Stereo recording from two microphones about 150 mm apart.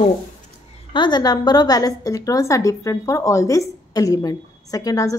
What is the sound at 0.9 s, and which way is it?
A woman's voice, 30° left (ahead or behind).